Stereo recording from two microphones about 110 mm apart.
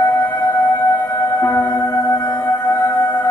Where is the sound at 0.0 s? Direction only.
30° left (ahead or behind).